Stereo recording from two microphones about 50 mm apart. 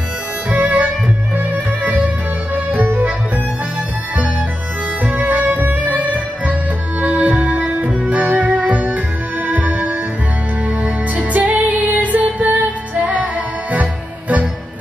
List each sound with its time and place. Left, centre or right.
0.5 s music: right
5.0 s music: right